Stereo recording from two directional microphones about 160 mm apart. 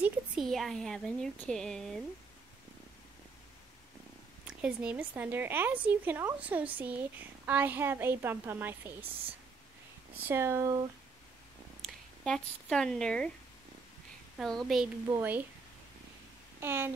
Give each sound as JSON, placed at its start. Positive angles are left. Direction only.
{"t": 0.4, "sound": "speech", "side_deg": 0}
{"t": 4.5, "sound": "a woman's voice", "side_deg": -10}
{"t": 10.2, "sound": "a woman's voice", "side_deg": -15}
{"t": 11.8, "sound": "speech", "side_deg": 5}
{"t": 14.4, "sound": "speech", "side_deg": 0}
{"t": 15.0, "sound": "a woman's voice", "side_deg": -15}
{"t": 16.5, "sound": "a child's voice", "side_deg": -15}